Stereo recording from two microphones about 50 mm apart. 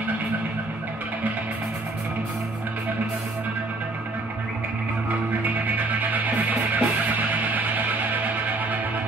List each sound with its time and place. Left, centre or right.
5.4 s music: right